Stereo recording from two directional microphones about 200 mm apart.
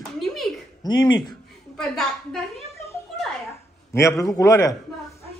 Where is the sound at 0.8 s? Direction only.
20° left (ahead or behind).